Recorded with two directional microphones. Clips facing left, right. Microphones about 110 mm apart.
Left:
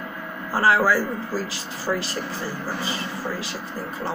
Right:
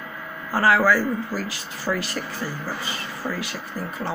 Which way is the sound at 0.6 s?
30° left (ahead or behind).